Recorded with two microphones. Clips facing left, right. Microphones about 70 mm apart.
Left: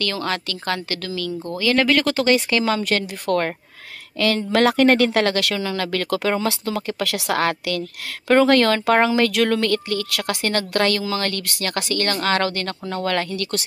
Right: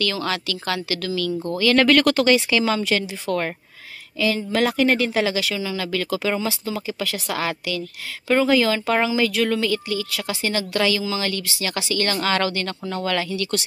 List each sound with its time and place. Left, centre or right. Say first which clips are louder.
0.0 s speech: even; left
1.6 s speech: right 2 dB; left
2.3 s a woman's voice: even; left
4.5 s a woman's voice: left 5 dB; left